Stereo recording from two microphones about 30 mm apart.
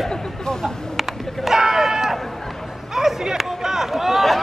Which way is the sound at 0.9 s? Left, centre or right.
Centre.